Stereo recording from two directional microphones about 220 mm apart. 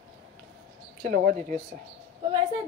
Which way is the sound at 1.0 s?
35° right (ahead or behind).